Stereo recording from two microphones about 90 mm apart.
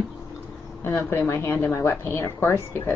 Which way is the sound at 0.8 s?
25° left (ahead or behind).